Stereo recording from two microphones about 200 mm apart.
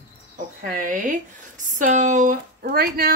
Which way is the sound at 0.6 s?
45° right (ahead or behind).